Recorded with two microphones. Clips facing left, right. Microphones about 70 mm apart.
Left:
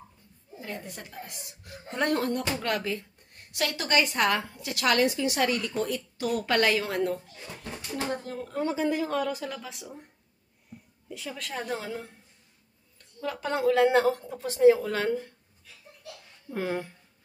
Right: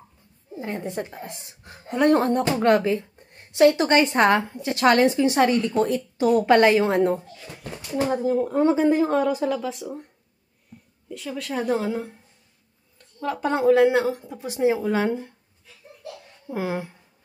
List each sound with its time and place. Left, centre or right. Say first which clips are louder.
0.6 s a woman's voice: right 10 dB; right
1.8 s a woman's voice: right 7 dB; centre
2.0 s a woman's voice: right 9 dB; right
7.4 s a woman's voice: right 2 dB; centre
8.5 s speech: right 7 dB; right
9.5 s a woman's voice: right 12 dB; centre
11.1 s a woman's voice: right 6 dB; centre
13.4 s a woman's voice: right 6 dB; right
16.5 s a woman's voice: right 3 dB; centre